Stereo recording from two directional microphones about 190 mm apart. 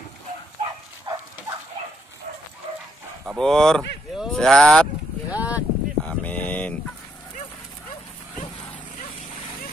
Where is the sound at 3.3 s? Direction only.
Centre (ahead or behind).